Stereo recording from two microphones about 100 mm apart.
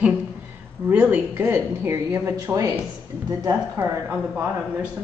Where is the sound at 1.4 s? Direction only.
25° right (ahead or behind).